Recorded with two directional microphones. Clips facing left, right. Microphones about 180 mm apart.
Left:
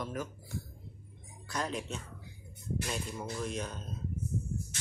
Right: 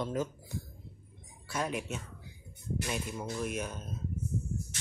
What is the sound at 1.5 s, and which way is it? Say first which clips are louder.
Speech: right 2 dB; 10° right (ahead or behind).